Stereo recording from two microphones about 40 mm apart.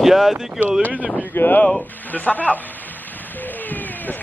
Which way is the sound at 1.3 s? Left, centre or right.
Left.